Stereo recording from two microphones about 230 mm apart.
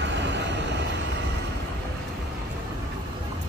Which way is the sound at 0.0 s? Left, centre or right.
Right.